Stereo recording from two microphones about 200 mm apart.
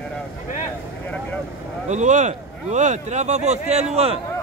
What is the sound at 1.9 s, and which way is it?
A man's voice, 35° right (ahead or behind).